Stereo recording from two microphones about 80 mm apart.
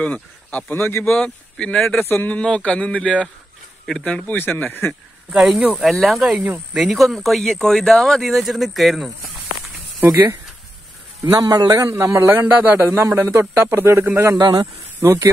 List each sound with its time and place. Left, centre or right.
0.0 s speech: centre
1.1 s speech: centre
2.0 s speech: left
2.3 s speech: centre
4.4 s speech: left
5.3 s speech: centre
11.3 s a man's voice: right
12.9 s a man's voice: right
14.4 s speech: right